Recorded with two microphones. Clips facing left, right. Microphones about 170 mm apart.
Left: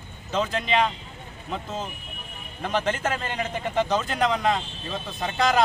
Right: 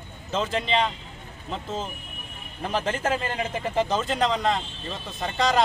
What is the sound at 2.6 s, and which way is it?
Speech, 5° right (ahead or behind).